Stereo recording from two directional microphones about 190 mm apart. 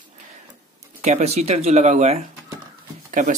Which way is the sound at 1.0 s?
40° right (ahead or behind).